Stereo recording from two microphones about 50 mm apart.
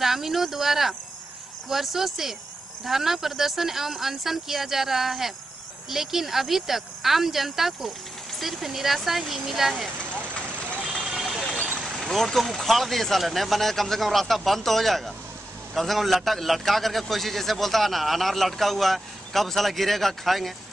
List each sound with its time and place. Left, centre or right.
0.0 s a man's voice: centre
11.0 s vehicle: centre
12.0 s a man's voice: centre